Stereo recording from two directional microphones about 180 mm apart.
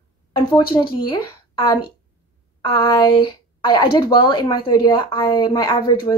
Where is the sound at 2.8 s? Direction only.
30° left (ahead or behind).